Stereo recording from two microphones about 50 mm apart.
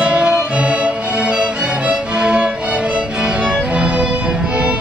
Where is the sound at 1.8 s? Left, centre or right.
Right.